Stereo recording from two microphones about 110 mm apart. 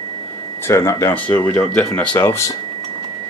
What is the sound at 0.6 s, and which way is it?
Speech, 25° left (ahead or behind).